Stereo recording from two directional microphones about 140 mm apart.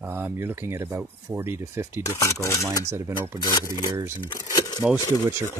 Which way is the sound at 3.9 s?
20° right (ahead or behind).